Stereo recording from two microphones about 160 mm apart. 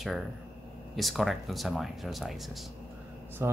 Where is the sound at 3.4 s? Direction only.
15° right (ahead or behind).